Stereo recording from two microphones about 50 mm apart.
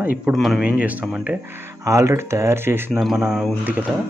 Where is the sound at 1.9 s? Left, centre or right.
Right.